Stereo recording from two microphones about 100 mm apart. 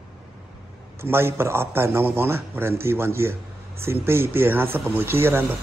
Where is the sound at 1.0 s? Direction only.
25° right (ahead or behind).